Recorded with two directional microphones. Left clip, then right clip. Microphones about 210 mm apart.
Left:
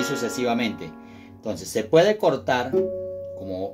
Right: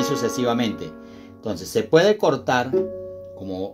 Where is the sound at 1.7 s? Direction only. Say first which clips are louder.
Right 1 dB; 30° right (ahead or behind).